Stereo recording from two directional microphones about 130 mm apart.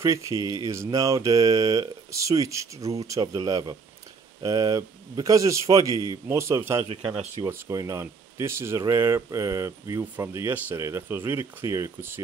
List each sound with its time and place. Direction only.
0.0 s speech: 25° right (ahead or behind)